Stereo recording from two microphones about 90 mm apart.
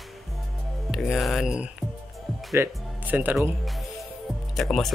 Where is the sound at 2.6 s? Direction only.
20° right (ahead or behind).